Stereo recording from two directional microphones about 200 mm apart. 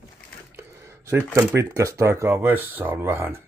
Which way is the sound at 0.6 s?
15° right (ahead or behind).